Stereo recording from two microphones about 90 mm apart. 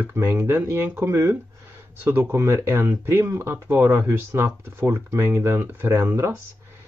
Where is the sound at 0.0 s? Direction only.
25° right (ahead or behind).